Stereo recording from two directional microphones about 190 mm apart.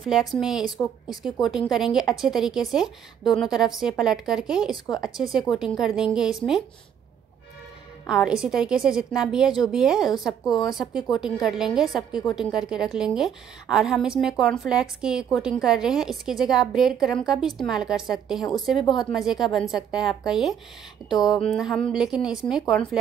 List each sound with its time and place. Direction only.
0.0 s a woman's voice: centre (ahead or behind)
8.1 s a woman's voice: 5° right (ahead or behind)